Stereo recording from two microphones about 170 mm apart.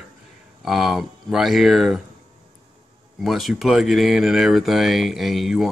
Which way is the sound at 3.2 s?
Centre (ahead or behind).